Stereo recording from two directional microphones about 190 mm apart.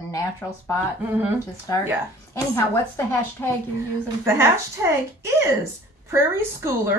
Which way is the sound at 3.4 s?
10° left (ahead or behind).